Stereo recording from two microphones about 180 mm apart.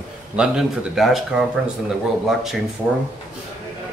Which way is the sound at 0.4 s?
Centre (ahead or behind).